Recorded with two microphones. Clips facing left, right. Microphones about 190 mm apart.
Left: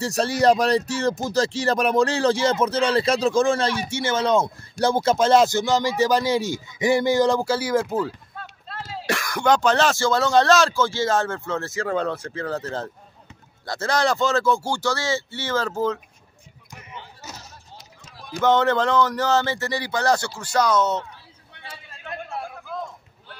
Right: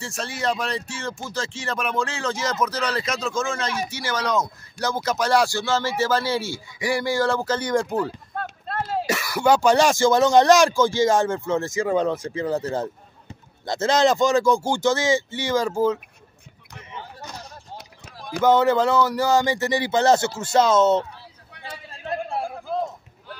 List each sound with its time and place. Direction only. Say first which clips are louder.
0.0 s speech: left 8 dB; 40° left (ahead or behind); by 8.1 s 5° left (ahead or behind)
8.4 s run: right 8 dB; 55° right (ahead or behind)
9.1 s speech: even; 5° right (ahead or behind)
17.7 s run: right 4 dB; 60° right (ahead or behind)
18.4 s speech: right 2 dB; 10° right (ahead or behind); by 21.0 s 25° right (ahead or behind)
22.0 s a sound: right 5 dB; 30° right (ahead or behind)